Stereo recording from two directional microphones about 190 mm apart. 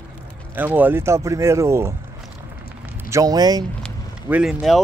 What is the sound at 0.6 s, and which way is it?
Speech, 10° right (ahead or behind).